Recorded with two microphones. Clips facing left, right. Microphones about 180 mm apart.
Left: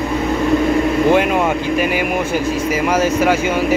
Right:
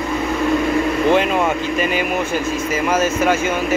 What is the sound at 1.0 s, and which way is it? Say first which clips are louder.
Speech: left 1 dB; 10° left (ahead or behind).